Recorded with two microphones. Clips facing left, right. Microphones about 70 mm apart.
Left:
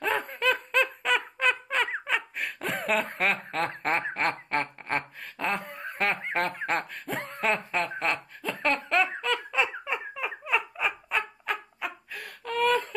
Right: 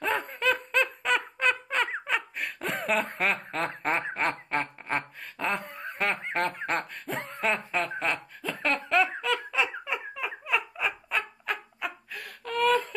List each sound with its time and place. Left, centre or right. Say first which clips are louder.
0.0 s snicker: left 1 dB; centre